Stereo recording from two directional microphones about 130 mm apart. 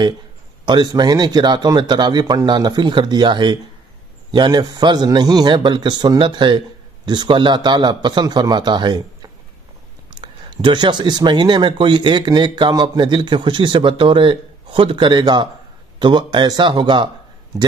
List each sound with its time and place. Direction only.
0.7 s speech: 35° right (ahead or behind)
10.6 s speech: 35° right (ahead or behind)